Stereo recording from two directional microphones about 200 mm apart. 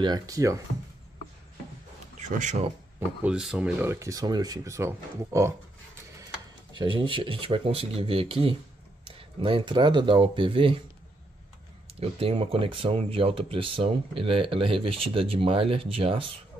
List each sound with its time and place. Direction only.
0.0 s speech: 20° right (ahead or behind)
2.1 s speech: 35° right (ahead or behind)
3.3 s speech: 5° right (ahead or behind)
6.8 s speech: 25° right (ahead or behind)
11.9 s speech: 30° right (ahead or behind)